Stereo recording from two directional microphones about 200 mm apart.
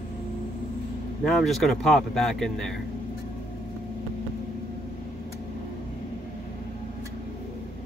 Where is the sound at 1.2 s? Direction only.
Centre (ahead or behind).